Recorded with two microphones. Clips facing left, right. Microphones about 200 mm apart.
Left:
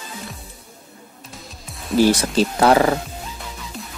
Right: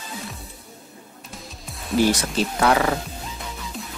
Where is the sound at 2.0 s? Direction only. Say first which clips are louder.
Left 4 dB; 35° left (ahead or behind).